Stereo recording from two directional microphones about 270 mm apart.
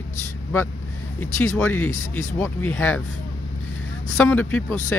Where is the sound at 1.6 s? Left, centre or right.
Centre.